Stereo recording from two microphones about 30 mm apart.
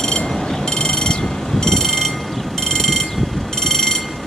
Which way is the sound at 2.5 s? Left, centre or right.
Centre.